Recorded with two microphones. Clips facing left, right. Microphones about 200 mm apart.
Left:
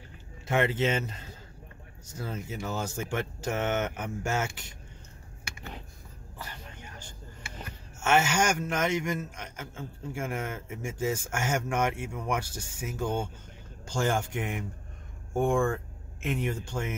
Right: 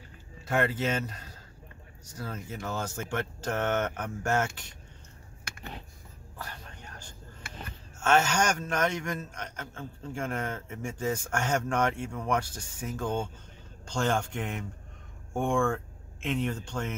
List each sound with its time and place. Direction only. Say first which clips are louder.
0.5 s speech: left 2 dB; 20° left (ahead or behind)
2.1 s speech: left 2 dB; 20° left (ahead or behind)
2.5 s a man's voice: even; 10° left (ahead or behind)
8.0 s a man's voice: even; 10° left (ahead or behind)